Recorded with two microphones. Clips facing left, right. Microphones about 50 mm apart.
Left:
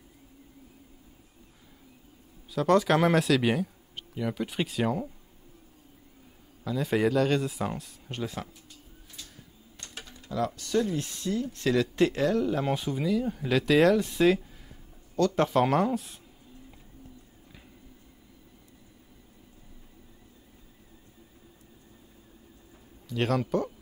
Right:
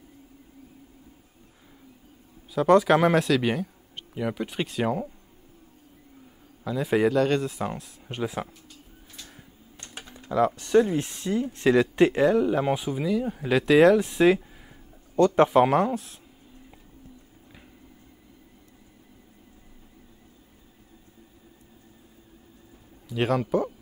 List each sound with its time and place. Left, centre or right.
2.5 s speech: centre
4.1 s speech: centre
4.5 s a man's voice: centre
6.6 s a man's voice: centre
9.8 s speech: centre
15.1 s speech: right
15.6 s a man's voice: centre
23.0 s speech: centre